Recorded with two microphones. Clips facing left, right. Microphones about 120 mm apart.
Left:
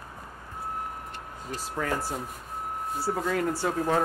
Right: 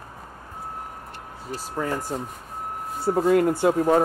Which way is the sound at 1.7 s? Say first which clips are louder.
Right 3 dB; 15° right (ahead or behind).